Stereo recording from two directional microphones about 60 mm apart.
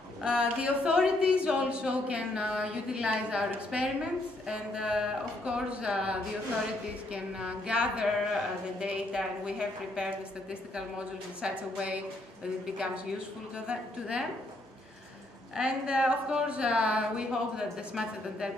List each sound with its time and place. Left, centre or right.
0.2 s speech: centre
15.5 s speech: centre